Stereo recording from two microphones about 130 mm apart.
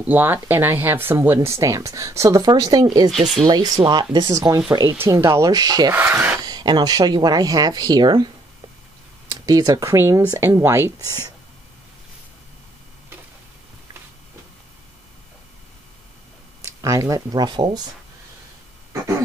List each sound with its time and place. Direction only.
0.0 s speech: 15° right (ahead or behind); by 5.9 s 30° right (ahead or behind)
5.9 s speech: 15° right (ahead or behind)
6.4 s speech: 35° right (ahead or behind)
9.3 s speech: 30° right (ahead or behind)
16.6 s speech: 25° right (ahead or behind)